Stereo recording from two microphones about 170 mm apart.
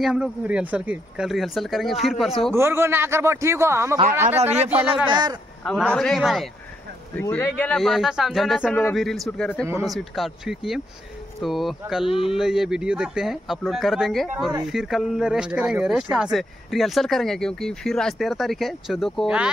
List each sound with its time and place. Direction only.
0.0 s speech: 5° right (ahead or behind)
2.5 s a man's voice: 15° right (ahead or behind)
4.4 s speech: 40° right (ahead or behind)
4.6 s a man's voice: 10° right (ahead or behind)
5.1 s speech: 25° right (ahead or behind)
5.6 s speech: 5° left (ahead or behind)
7.2 s speech: 10° left (ahead or behind); by 19.5 s 5° right (ahead or behind)